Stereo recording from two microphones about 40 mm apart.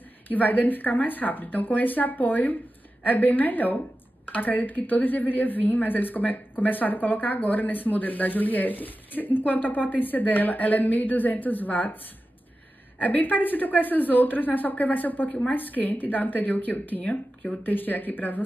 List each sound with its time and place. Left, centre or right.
0.3 s a woman's voice: left
13.0 s a woman's voice: left
17.0 s speech: left
17.6 s a woman's voice: left